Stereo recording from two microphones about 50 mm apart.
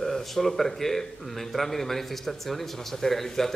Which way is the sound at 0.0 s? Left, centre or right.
Centre.